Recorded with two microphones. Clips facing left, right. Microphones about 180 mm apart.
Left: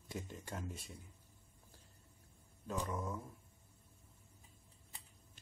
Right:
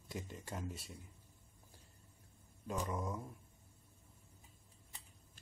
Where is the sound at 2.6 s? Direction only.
15° right (ahead or behind).